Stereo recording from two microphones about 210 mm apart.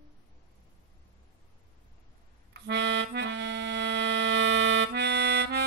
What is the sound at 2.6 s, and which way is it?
Music, 55° right (ahead or behind).